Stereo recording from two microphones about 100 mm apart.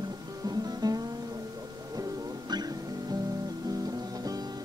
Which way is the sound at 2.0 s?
40° right (ahead or behind).